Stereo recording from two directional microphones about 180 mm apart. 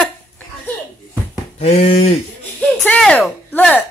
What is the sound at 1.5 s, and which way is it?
Speech, 35° left (ahead or behind).